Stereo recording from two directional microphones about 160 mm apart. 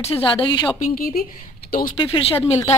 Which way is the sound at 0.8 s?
65° left (ahead or behind).